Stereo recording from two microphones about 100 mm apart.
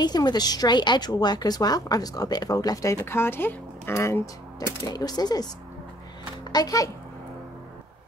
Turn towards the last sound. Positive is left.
turn(degrees=40)  # may be behind; listen again after turning